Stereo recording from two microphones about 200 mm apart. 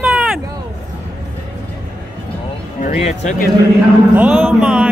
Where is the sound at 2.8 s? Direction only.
35° left (ahead or behind).